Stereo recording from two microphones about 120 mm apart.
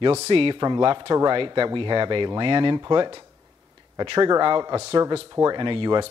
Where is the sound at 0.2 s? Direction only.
50° right (ahead or behind).